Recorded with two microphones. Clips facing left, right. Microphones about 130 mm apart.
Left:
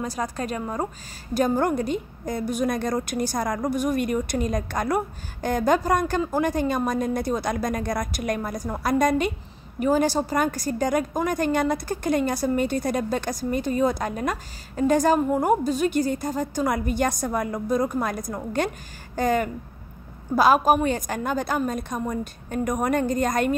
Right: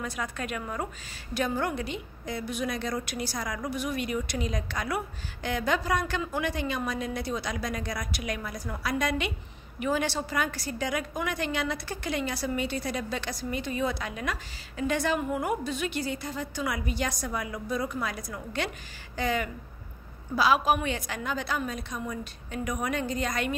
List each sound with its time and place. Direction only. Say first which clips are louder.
0.0 s a woman's voice: left 6 dB; 35° left (ahead or behind)